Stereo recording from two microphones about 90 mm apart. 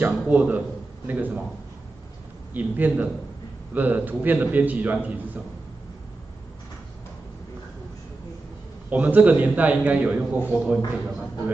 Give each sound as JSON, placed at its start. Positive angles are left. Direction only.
{"t": 0.0, "sound": "a man's voice", "side_deg": -20}
{"t": 2.5, "sound": "a man's voice", "side_deg": -20}
{"t": 8.9, "sound": "a man's voice", "side_deg": -15}